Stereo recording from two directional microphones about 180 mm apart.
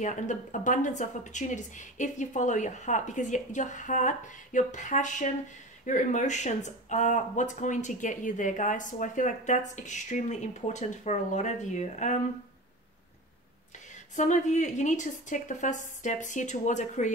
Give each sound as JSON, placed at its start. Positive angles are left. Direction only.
{"t": 0.0, "sound": "speech", "side_deg": 40}
{"t": 14.1, "sound": "speech", "side_deg": 40}